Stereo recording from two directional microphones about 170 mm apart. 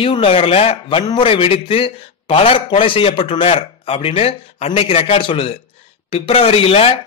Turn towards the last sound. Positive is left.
turn(degrees=35)  # may be behind; listen again after turning